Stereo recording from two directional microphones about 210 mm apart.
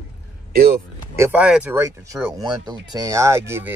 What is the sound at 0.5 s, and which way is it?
Speech, 45° right (ahead or behind).